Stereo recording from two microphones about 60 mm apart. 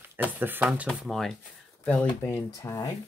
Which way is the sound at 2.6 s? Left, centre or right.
Left.